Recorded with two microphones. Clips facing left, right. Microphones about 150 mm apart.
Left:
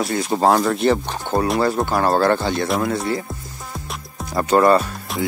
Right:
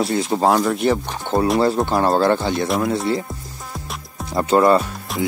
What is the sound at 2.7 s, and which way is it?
Speech, centre (ahead or behind).